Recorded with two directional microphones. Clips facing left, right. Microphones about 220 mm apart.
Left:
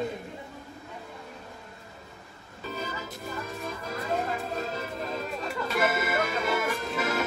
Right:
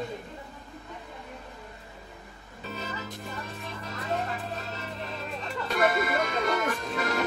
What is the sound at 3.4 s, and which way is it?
Music, 45° left (ahead or behind).